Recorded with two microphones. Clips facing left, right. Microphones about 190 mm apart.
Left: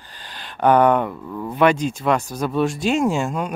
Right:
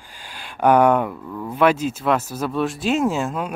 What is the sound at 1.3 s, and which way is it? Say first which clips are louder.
Speech: left 1 dB; 5° left (ahead or behind).